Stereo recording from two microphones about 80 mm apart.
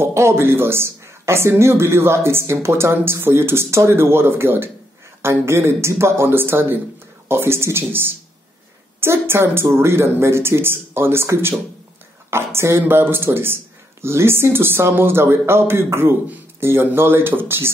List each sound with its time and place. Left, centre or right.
0.0 s speech: right
9.0 s speech: right